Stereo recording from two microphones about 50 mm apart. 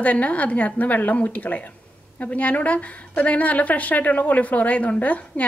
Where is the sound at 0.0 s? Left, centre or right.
Left.